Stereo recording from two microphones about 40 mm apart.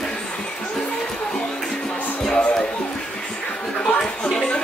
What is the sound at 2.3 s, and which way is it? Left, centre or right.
Music, left.